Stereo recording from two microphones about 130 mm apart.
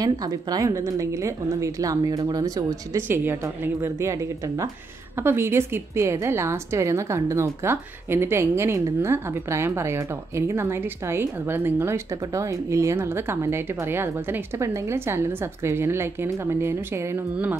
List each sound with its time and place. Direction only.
0.0 s a woman's voice: 30° right (ahead or behind)
3.0 s a woman's voice: 15° right (ahead or behind)